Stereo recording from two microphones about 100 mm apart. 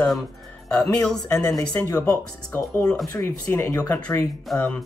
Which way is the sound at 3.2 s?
25° left (ahead or behind).